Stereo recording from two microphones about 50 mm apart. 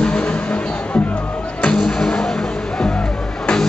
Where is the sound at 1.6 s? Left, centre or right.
Centre.